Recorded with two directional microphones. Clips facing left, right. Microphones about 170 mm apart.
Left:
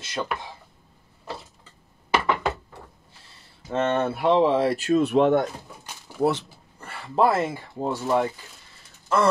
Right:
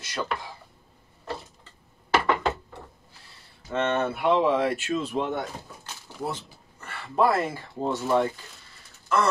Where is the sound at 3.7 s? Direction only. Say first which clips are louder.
Left 2 dB; 30° left (ahead or behind).